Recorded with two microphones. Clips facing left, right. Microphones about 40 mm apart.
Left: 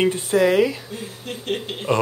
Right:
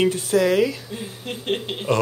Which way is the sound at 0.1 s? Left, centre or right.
Left.